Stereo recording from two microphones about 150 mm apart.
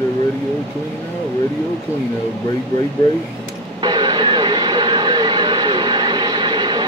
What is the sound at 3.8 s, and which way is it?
Vehicle, 30° right (ahead or behind).